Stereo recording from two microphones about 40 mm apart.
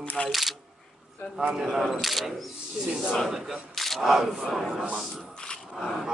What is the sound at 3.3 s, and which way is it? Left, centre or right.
Speech, centre.